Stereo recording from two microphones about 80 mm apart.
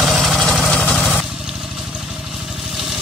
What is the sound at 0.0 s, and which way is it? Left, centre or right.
Vehicle, centre.